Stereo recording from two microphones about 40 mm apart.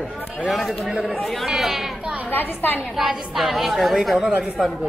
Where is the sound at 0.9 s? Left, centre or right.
Centre.